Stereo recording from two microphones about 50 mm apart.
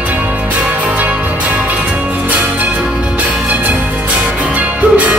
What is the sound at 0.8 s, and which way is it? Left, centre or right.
Music, right.